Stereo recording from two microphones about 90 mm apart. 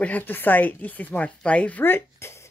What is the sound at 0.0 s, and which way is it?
Speech, 20° left (ahead or behind).